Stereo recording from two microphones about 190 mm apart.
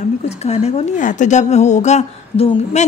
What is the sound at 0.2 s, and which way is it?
A woman's voice, 35° left (ahead or behind).